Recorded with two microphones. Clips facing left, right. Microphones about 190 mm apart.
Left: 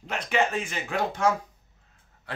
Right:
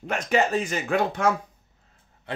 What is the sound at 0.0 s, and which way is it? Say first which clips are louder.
Speech: right 3 dB; 45° right (ahead or behind).